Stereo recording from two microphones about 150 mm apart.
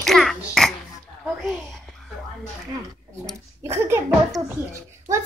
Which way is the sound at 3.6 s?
15° right (ahead or behind).